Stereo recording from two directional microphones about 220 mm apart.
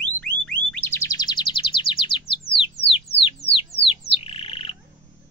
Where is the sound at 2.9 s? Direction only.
25° left (ahead or behind).